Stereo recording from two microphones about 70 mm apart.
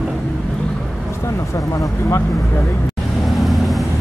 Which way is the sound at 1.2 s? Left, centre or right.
Left.